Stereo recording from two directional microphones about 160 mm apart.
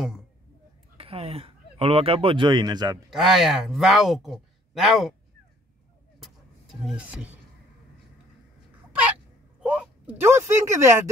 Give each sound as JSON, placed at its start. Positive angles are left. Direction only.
{"t": 0.9, "sound": "speech", "side_deg": -35}
{"t": 3.1, "sound": "speech", "side_deg": 0}
{"t": 6.9, "sound": "speech", "side_deg": -5}
{"t": 9.6, "sound": "speech", "side_deg": -10}